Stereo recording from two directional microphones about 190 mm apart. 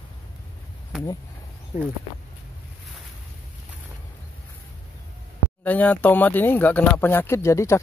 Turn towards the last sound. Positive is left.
turn(degrees=15)  # may be behind; listen again after turning